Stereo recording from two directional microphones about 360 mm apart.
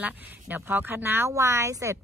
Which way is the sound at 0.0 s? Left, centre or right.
Centre.